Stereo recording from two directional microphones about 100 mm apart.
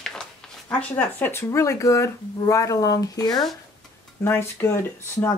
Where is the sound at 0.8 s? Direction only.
15° left (ahead or behind); by 3.5 s 40° left (ahead or behind).